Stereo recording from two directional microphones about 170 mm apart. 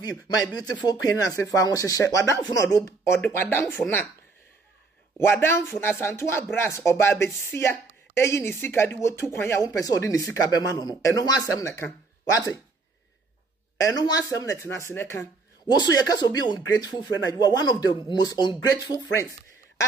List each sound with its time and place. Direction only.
0.8 s a woman's voice: 20° left (ahead or behind)
5.1 s a woman's voice: 15° left (ahead or behind)
13.7 s speech: 20° left (ahead or behind)